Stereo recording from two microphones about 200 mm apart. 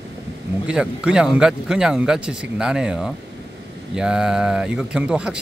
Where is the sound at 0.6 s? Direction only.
5° right (ahead or behind).